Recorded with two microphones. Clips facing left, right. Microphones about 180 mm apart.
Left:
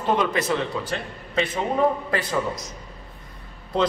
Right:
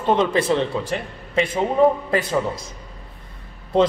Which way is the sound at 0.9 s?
10° right (ahead or behind).